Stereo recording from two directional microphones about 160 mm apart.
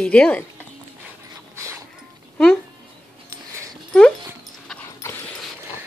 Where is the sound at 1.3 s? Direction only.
20° right (ahead or behind).